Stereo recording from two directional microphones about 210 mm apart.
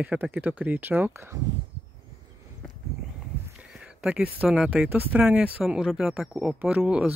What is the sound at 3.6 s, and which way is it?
Speech, 5° right (ahead or behind).